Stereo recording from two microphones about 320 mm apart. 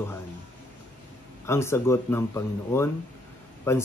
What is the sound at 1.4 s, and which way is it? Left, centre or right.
Speech, centre.